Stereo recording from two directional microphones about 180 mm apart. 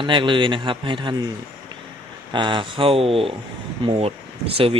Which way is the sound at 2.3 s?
25° right (ahead or behind).